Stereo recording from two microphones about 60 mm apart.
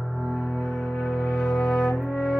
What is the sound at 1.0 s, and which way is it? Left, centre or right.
Music, centre.